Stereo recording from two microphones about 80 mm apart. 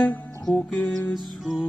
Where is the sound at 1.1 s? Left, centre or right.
Centre.